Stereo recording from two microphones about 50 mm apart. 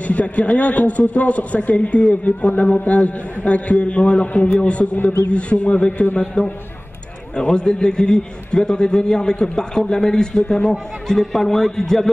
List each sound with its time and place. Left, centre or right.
0.0 s a man's voice: left; by 12.1 s centre